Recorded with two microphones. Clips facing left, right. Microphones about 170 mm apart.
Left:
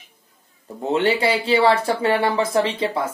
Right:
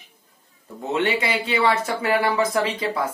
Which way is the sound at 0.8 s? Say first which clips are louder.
Left 4 dB; 30° left (ahead or behind).